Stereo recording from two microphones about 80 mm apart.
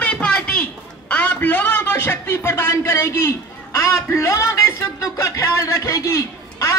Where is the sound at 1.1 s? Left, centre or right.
Centre.